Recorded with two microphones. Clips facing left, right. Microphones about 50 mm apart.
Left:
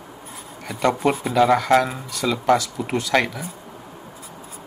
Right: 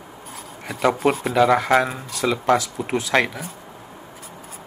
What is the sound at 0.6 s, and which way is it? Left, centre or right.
Speech, centre.